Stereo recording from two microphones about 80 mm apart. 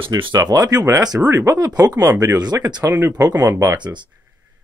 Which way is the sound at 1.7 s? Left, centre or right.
Right.